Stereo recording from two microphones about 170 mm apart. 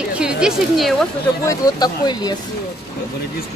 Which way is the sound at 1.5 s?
25° left (ahead or behind).